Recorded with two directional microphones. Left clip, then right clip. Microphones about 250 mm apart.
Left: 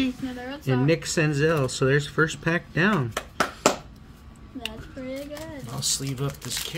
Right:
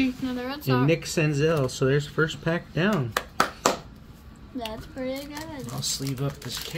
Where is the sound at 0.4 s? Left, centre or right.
Right.